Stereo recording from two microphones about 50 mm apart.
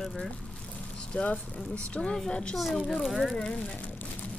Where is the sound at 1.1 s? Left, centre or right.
Left.